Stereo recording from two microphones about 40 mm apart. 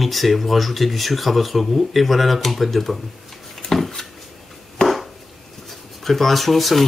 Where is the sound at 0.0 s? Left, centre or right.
Centre.